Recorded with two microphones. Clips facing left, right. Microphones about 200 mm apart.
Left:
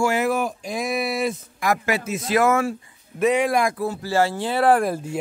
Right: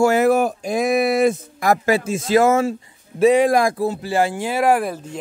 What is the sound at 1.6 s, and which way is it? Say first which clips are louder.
Speech: right 3 dB; 35° right (ahead or behind).